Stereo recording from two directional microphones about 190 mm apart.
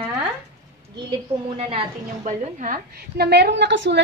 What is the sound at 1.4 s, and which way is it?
A woman's voice, 30° right (ahead or behind).